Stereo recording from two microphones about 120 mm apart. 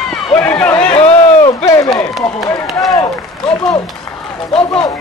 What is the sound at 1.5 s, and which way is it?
Speech, 30° left (ahead or behind).